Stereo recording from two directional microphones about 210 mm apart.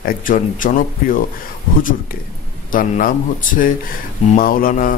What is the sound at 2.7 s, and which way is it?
Speech, 40° left (ahead or behind).